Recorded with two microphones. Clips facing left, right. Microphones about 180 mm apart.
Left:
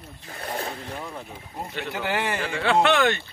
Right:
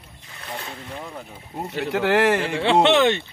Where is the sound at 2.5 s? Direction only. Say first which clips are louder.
Even; 25° right (ahead or behind).